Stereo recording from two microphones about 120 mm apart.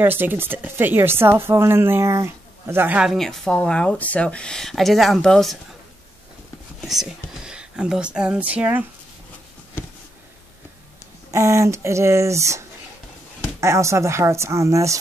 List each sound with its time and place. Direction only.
0.0 s speech: 15° right (ahead or behind)
3.1 s speech: centre (ahead or behind)
6.8 s speech: centre (ahead or behind)
11.3 s speech: 25° right (ahead or behind)